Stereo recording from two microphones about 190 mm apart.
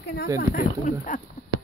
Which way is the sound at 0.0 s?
55° left (ahead or behind).